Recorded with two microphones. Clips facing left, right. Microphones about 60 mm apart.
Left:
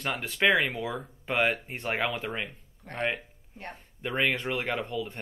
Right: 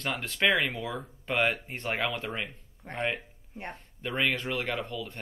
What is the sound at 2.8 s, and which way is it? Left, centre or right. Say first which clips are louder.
Speech: right 1 dB; right.